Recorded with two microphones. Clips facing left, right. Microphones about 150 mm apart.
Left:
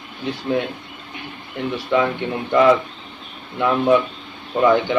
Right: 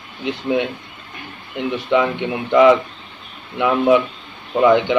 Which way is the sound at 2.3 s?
5° right (ahead or behind).